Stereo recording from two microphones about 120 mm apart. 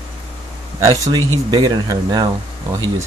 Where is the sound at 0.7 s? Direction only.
25° right (ahead or behind).